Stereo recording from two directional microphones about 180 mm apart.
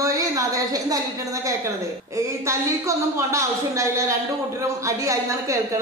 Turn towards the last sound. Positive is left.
turn(degrees=-15)  # may be behind; listen again after turning